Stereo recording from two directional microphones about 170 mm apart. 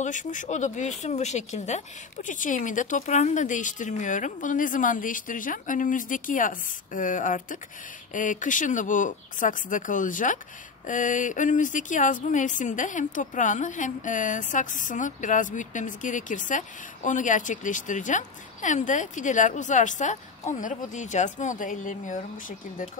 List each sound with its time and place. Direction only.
0.0 s speech: 45° left (ahead or behind)